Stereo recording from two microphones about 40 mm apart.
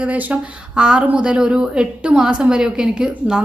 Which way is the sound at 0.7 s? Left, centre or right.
Centre.